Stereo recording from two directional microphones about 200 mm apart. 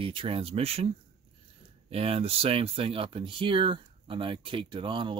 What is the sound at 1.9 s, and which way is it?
Speech, 30° right (ahead or behind).